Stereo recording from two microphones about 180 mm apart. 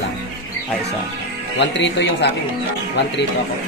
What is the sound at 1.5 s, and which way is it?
Speech, 75° left (ahead or behind).